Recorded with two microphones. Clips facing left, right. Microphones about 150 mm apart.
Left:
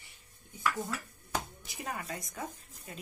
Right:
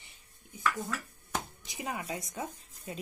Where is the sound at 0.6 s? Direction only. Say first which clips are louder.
Right 1 dB; 10° left (ahead or behind).